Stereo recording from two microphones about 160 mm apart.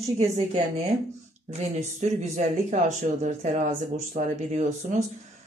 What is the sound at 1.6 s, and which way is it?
Speech, 45° right (ahead or behind).